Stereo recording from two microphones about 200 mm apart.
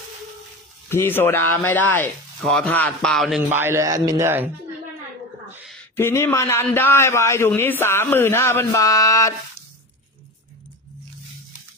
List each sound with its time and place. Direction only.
0.8 s speech: 10° left (ahead or behind); by 4.5 s 10° right (ahead or behind)
5.9 s a man's voice: 10° left (ahead or behind)